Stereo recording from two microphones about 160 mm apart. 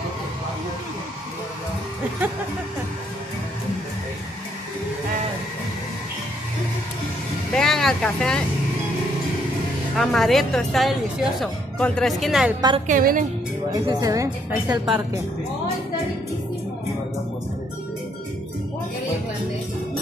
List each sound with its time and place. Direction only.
7.5 s speech: centre (ahead or behind)
9.9 s speech: centre (ahead or behind)
12.8 s a woman's voice: 55° right (ahead or behind)
13.8 s a woman's voice: 25° right (ahead or behind)